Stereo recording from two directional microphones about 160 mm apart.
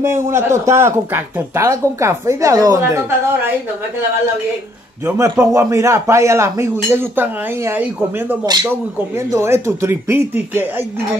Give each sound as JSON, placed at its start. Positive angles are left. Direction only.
{"t": 0.0, "sound": "speech", "side_deg": -15}
{"t": 5.0, "sound": "speech", "side_deg": -15}